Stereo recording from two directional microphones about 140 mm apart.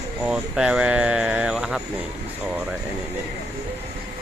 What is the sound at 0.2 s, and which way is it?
Speech, 5° right (ahead or behind).